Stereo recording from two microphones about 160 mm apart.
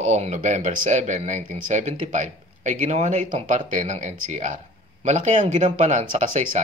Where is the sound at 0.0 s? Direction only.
45° right (ahead or behind).